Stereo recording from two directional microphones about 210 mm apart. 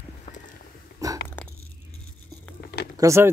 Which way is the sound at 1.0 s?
15° right (ahead or behind).